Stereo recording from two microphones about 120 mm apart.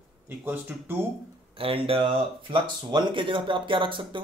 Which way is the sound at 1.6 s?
50° right (ahead or behind).